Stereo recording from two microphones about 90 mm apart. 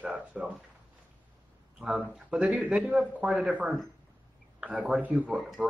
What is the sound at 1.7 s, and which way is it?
A man's voice, 10° right (ahead or behind).